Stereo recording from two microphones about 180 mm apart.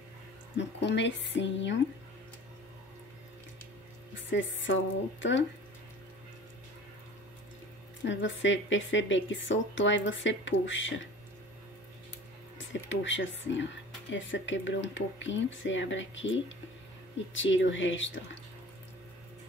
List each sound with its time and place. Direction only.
0.6 s speech: 75° left (ahead or behind)
4.1 s speech: 90° left
8.0 s a woman's voice: 90° left
12.5 s a woman's voice: 90° left